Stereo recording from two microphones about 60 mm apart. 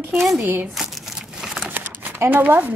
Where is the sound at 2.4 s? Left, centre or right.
Right.